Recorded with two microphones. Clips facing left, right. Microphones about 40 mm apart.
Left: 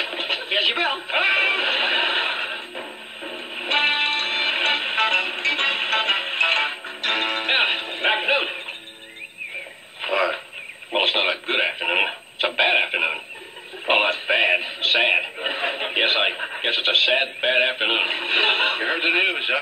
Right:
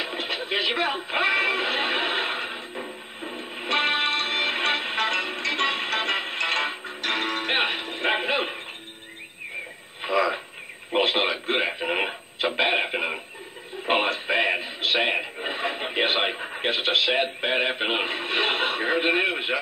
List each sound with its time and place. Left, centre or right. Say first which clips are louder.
0.0 s radio: left 3 dB; left
3.3 s music: left 2 dB; left
10.0 s a sound: left 1 dB; left
11.0 s radio: left 2 dB; left
13.8 s music: left 4 dB; left
16.6 s speech: left 3 dB; left